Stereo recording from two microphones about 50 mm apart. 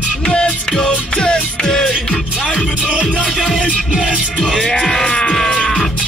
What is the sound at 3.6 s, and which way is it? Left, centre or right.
Music, right.